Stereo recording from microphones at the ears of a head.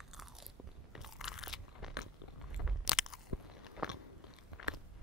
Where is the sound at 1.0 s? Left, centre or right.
Left.